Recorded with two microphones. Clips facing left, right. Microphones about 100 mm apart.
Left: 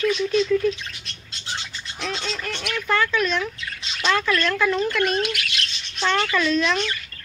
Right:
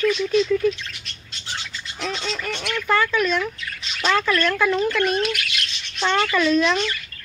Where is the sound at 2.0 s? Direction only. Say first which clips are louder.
Right 1 dB; 10° right (ahead or behind).